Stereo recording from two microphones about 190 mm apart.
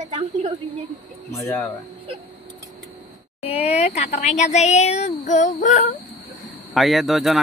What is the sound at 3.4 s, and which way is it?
Speech, 30° left (ahead or behind).